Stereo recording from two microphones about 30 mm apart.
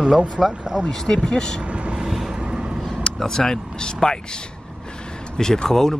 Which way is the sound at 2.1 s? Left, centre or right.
Centre.